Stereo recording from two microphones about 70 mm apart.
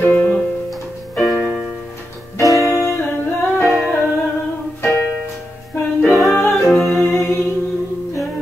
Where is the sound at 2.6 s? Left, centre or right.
Left.